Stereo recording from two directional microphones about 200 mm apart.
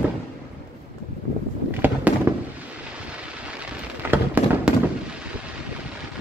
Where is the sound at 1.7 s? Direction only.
10° right (ahead or behind).